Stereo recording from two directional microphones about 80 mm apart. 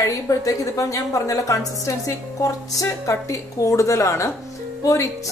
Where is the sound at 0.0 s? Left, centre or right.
Left.